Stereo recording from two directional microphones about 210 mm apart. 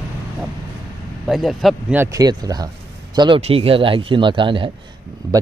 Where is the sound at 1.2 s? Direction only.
Centre (ahead or behind).